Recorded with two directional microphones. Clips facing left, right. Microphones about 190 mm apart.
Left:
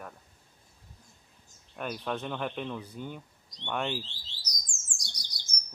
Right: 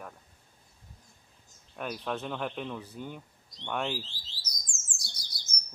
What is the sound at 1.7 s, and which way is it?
Speech, centre (ahead or behind).